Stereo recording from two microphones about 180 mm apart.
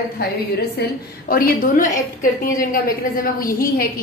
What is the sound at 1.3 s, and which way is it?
A woman's voice, 50° left (ahead or behind).